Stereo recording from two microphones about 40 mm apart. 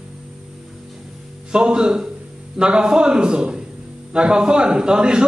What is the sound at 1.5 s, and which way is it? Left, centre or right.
A man's voice, right.